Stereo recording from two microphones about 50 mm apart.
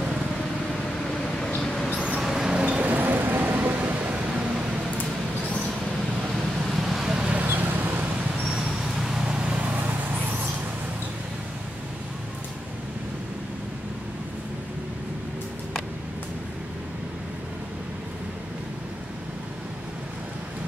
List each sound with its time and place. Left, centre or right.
1.6 s vehicle: centre
2.0 s vehicle: centre
2.6 s vehicle: right
6.8 s vehicle: centre
7.4 s vehicle: right
8.6 s vehicle: centre; by 9.9 s right